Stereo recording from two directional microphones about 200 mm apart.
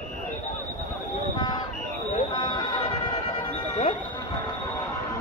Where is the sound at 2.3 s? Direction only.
20° left (ahead or behind).